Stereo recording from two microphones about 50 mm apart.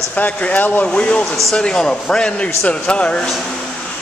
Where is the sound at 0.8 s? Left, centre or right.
Left.